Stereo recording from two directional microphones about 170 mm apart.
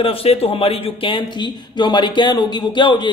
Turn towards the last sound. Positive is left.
turn(degrees=25)  # may be behind; listen again after turning